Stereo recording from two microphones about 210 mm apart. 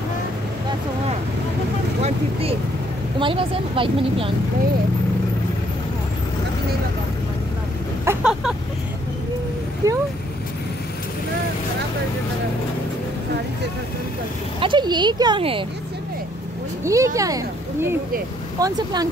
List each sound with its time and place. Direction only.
2.0 s a woman's voice: 30° right (ahead or behind)
8.0 s vehicle: 10° right (ahead or behind)
9.8 s speech: 15° right (ahead or behind)
14.6 s a woman's voice: 20° right (ahead or behind)
16.8 s a woman's voice: 15° right (ahead or behind)